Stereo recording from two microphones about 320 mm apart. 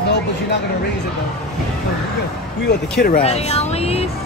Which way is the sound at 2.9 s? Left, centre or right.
Left.